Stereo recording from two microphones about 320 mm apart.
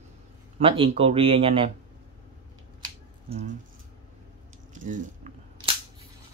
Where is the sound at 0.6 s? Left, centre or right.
Centre.